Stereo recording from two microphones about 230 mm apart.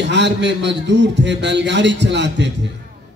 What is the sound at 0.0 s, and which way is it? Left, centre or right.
A man's voice, right.